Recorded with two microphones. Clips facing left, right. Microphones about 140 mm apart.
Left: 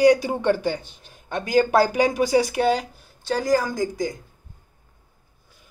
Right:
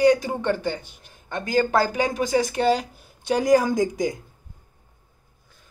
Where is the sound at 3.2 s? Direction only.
15° right (ahead or behind).